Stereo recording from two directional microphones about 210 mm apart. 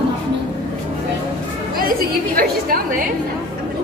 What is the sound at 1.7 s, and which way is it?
A woman's voice, 45° right (ahead or behind).